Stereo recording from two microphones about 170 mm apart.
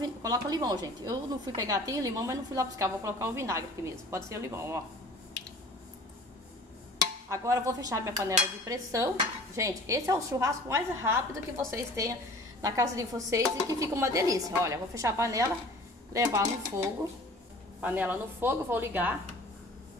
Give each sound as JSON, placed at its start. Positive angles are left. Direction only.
{"t": 0.0, "sound": "a woman's voice", "side_deg": -20}
{"t": 7.2, "sound": "a woman's voice", "side_deg": -15}
{"t": 8.6, "sound": "dishes", "side_deg": -20}
{"t": 12.6, "sound": "a woman's voice", "side_deg": -20}
{"t": 16.1, "sound": "dishes", "side_deg": -15}
{"t": 17.7, "sound": "dishes", "side_deg": -10}